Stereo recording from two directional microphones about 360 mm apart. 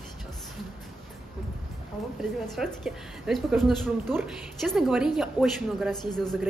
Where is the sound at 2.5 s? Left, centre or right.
Centre.